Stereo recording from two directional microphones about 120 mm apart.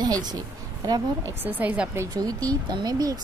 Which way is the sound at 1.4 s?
15° right (ahead or behind).